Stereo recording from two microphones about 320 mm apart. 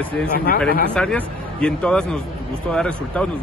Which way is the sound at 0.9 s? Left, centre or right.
Centre.